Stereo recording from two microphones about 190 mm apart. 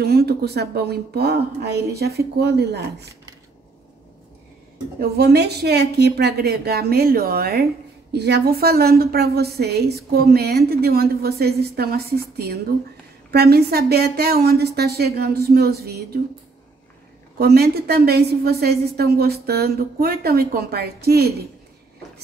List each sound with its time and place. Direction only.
0.0 s a woman's voice: 55° right (ahead or behind)
5.0 s a woman's voice: 55° right (ahead or behind)
17.4 s a woman's voice: 55° right (ahead or behind)